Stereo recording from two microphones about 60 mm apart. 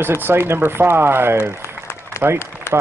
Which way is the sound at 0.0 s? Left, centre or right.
Right.